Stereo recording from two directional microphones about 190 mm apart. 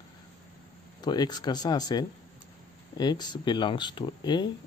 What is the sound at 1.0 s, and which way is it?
Speech, 20° left (ahead or behind).